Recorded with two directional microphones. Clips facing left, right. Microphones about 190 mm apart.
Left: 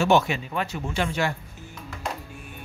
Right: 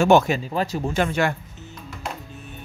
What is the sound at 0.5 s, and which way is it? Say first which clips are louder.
Speech: right 5 dB; 35° right (ahead or behind).